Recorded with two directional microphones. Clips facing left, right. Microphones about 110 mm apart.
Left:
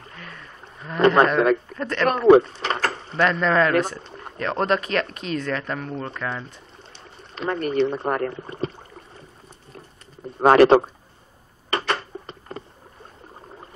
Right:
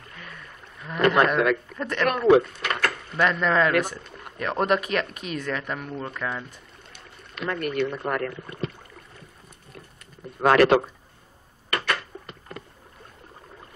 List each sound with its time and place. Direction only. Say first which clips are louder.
0.1 s rowboat: even; 30° left (ahead or behind)
0.9 s a man's voice: left 4 dB; 30° left (ahead or behind)
1.8 s speech: left 2 dB; 15° right (ahead or behind)
2.0 s a sound: left 4 dB; 35° left (ahead or behind)
3.2 s speech: left 2 dB; 10° right (ahead or behind)
3.9 s a sound: left 3 dB; 35° left (ahead or behind)
4.4 s speech: left 1 dB; 10° right (ahead or behind)
6.9 s boat: left 1 dB; 30° left (ahead or behind)
10.4 s a man's voice: left 4 dB; 30° left (ahead or behind)
11.7 s a sound: left 3 dB; 30° left (ahead or behind)